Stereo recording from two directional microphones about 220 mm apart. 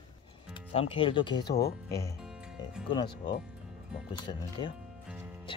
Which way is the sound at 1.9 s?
15° left (ahead or behind).